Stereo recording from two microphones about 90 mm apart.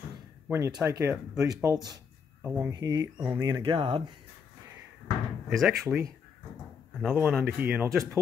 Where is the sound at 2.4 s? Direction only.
20° right (ahead or behind).